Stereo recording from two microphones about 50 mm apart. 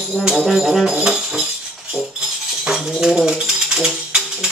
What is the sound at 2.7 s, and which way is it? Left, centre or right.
Music, centre.